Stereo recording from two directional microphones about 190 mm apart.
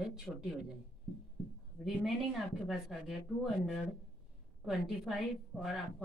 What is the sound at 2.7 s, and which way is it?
Speech, centre (ahead or behind).